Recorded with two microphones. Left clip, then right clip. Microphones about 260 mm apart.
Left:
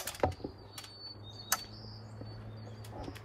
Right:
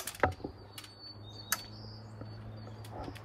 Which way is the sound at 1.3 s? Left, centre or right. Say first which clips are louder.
Left 2 dB; left.